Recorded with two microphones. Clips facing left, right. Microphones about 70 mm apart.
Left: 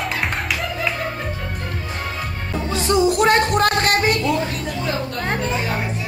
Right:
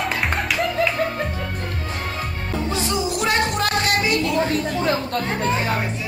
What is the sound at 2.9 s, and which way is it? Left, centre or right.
Music, left.